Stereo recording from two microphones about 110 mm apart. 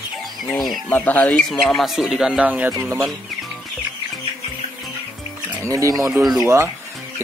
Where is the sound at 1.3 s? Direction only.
5° left (ahead or behind); by 3.1 s 20° right (ahead or behind).